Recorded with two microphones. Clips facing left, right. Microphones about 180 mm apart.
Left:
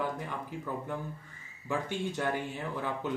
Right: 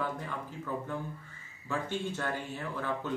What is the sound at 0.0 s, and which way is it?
Speech, 15° left (ahead or behind).